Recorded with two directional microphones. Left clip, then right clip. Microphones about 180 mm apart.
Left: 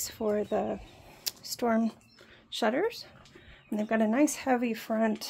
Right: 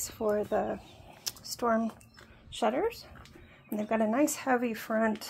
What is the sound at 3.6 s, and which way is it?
Speech, 25° left (ahead or behind).